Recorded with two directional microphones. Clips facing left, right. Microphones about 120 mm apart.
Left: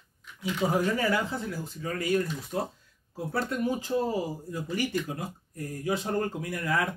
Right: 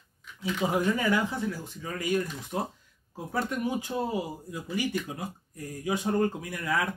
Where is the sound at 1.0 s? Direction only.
35° left (ahead or behind).